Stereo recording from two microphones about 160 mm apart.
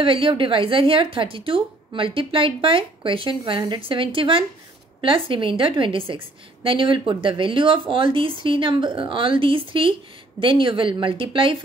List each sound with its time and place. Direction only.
0.0 s a woman's voice: 35° right (ahead or behind)